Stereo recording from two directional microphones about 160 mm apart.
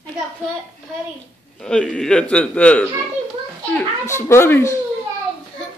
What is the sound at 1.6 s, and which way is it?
Speech, 5° left (ahead or behind).